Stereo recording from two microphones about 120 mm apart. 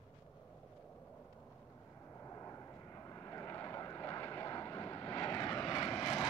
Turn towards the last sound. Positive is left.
turn(degrees=30)  # may be behind; listen again after turning